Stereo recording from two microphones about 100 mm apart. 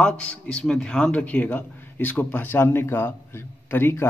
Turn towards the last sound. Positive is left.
turn(degrees=20)  # may be behind; listen again after turning